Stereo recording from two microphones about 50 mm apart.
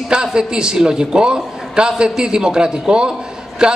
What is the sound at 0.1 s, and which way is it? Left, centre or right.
A man's voice, centre.